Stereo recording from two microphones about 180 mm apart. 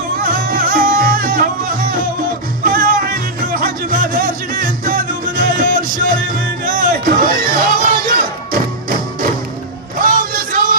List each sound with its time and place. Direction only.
0.2 s music: 55° right (ahead or behind)
9.9 s music: 50° right (ahead or behind)